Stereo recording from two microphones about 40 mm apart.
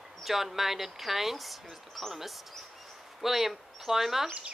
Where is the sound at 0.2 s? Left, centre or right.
Centre.